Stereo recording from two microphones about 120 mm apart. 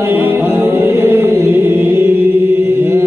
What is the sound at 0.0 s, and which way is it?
Music, 15° right (ahead or behind).